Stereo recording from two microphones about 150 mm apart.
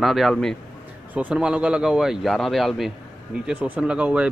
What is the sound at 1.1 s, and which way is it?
A man's voice, 5° right (ahead or behind).